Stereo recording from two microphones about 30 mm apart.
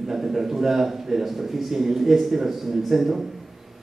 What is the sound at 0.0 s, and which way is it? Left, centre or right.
A man's voice, centre.